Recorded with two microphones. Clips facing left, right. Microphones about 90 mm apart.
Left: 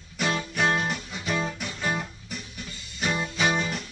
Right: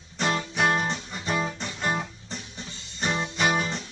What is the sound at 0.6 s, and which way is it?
Music, 5° right (ahead or behind).